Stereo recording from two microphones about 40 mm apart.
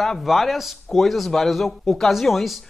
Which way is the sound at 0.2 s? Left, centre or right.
Centre.